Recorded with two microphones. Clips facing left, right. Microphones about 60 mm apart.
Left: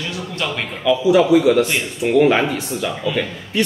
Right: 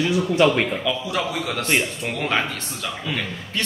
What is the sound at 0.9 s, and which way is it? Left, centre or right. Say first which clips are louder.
A man's voice: left 11 dB; centre.